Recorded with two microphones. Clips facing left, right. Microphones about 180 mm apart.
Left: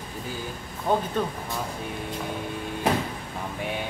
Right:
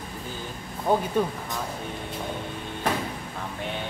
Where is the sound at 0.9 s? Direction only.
10° right (ahead or behind).